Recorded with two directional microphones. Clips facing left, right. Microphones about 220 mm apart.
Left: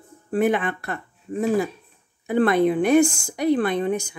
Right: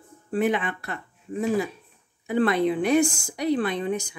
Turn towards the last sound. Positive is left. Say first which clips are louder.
# left 4 dB
turn(degrees=55)  # may be behind; listen again after turning